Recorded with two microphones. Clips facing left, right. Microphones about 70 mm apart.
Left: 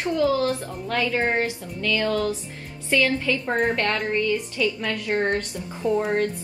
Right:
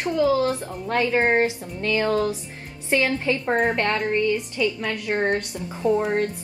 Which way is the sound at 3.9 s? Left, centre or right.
Centre.